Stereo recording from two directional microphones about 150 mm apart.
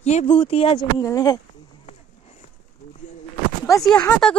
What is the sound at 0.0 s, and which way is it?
Speech, 45° left (ahead or behind).